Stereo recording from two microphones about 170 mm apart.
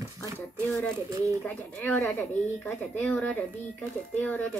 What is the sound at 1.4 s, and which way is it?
Speech, 10° left (ahead or behind).